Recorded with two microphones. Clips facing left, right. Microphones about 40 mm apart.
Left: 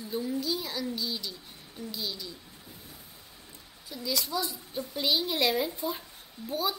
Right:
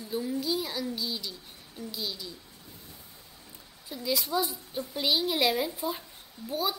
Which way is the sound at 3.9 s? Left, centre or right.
Centre.